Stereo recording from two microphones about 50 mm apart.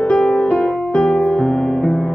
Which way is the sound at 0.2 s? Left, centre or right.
Centre.